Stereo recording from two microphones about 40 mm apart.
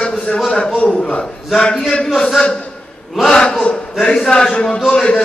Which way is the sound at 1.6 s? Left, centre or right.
Left.